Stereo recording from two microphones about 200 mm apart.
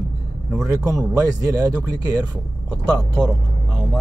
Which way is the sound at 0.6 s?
15° right (ahead or behind).